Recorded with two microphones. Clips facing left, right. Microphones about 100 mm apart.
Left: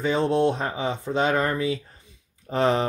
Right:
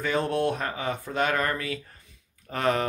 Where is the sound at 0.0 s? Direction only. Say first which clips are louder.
Left 4 dB; 20° left (ahead or behind).